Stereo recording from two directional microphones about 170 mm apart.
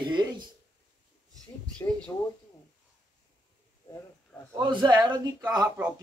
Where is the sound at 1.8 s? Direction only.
15° left (ahead or behind).